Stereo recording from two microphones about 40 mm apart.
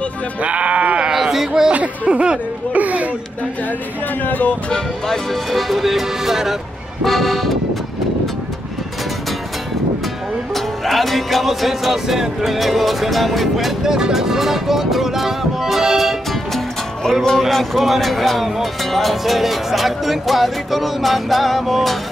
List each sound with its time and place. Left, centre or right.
0.4 s sheep: right
1.1 s a sound: centre
1.7 s speech: right
2.7 s a sound: right
4.2 s speech: left
4.6 s speech: centre
5.5 s speech: centre
7.1 s speech: centre
10.5 s speech: centre
13.8 s speech: centre
16.3 s music: centre
17.4 s speech: centre